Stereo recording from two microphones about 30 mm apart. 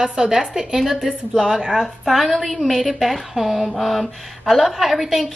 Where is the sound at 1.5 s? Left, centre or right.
Right.